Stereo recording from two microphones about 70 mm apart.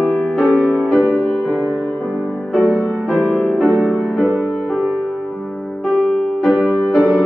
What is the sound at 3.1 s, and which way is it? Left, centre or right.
Music, centre.